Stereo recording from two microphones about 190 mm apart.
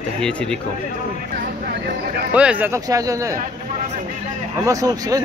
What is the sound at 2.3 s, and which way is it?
Speech, 10° right (ahead or behind).